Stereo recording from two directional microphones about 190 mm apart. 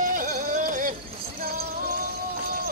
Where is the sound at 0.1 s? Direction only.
45° right (ahead or behind).